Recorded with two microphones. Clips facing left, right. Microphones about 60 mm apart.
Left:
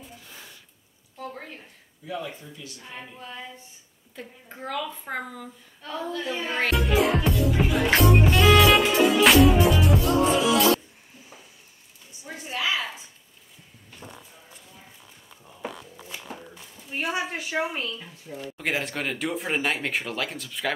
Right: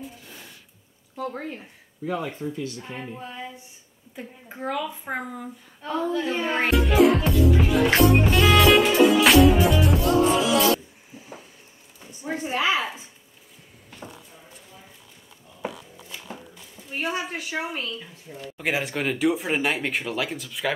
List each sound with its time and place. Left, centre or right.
2.0 s speech: right
2.8 s a woman's voice: right
6.7 s music: centre
12.1 s a sound: right
12.4 s a sound: right
17.0 s a woman's voice: left
18.6 s speech: centre